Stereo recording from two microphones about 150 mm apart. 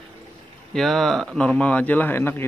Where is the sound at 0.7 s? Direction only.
Centre (ahead or behind).